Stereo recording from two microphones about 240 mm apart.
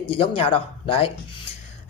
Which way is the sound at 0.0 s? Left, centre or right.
Left.